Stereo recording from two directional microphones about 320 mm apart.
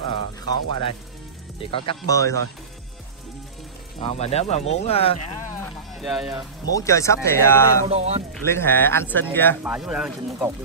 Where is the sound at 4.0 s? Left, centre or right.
Centre.